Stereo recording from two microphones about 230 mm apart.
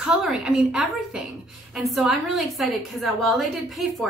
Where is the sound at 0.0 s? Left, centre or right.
Centre.